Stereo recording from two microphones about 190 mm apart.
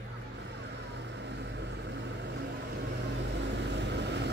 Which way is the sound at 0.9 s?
65° right (ahead or behind).